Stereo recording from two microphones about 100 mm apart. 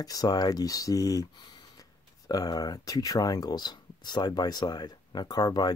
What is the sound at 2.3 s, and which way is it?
Speech, 40° left (ahead or behind).